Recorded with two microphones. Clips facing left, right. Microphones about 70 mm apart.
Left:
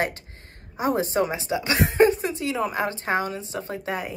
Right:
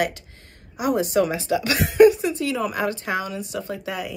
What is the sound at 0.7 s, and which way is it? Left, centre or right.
A woman's voice, left.